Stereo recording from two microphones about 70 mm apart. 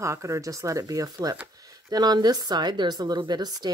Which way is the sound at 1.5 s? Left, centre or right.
Right.